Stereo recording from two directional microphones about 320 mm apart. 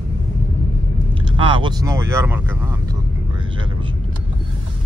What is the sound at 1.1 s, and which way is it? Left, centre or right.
Speech, centre.